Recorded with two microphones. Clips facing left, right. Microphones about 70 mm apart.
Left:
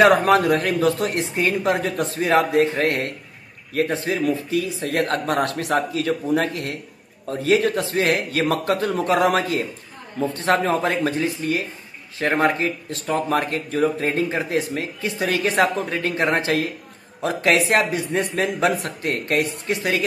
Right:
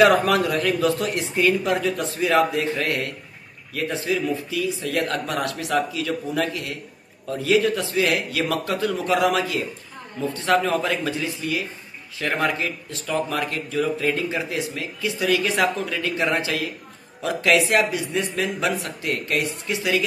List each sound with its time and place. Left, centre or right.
0.0 s speech: left